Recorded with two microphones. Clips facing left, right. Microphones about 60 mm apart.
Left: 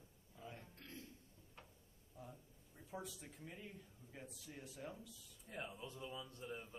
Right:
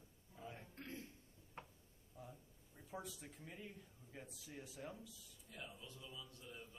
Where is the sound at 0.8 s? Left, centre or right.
Right.